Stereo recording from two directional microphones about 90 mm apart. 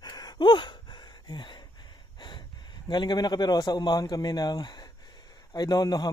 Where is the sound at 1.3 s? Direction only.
55° left (ahead or behind).